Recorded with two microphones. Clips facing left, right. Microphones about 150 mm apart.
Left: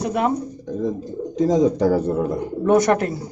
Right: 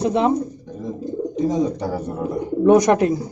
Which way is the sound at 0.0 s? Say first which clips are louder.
Right 3 dB; 25° right (ahead or behind).